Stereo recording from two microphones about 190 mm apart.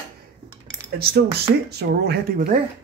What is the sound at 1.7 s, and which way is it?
Speech, 60° right (ahead or behind).